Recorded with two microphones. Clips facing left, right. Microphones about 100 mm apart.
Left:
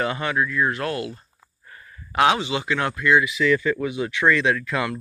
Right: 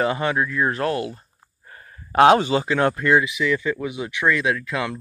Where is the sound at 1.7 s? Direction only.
35° right (ahead or behind).